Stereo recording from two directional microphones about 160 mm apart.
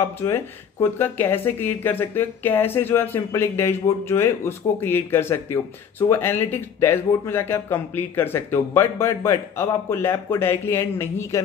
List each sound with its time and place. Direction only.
0.2 s speech: 15° left (ahead or behind)